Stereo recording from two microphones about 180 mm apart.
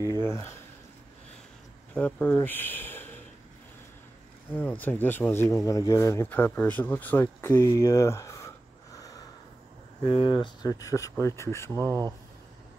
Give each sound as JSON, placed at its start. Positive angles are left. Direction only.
{"t": 0.0, "sound": "speech", "side_deg": -25}
{"t": 2.0, "sound": "speech", "side_deg": 5}
{"t": 4.6, "sound": "speech", "side_deg": 10}
{"t": 8.9, "sound": "snort", "side_deg": 20}
{"t": 10.0, "sound": "speech", "side_deg": 30}
{"t": 11.7, "sound": "speech", "side_deg": -15}